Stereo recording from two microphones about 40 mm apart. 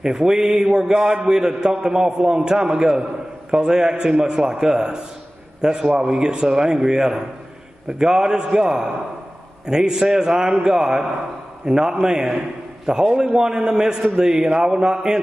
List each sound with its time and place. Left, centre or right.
0.0 s a man's voice: centre